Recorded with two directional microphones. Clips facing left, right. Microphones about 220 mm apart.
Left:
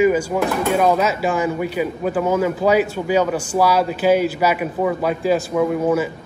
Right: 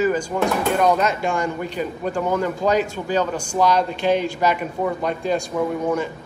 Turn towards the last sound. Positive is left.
turn(degrees=5)  # may be behind; listen again after turning